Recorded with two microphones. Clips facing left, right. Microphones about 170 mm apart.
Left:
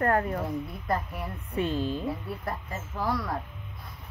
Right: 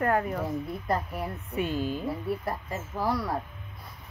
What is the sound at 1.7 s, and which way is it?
Speech, 5° right (ahead or behind).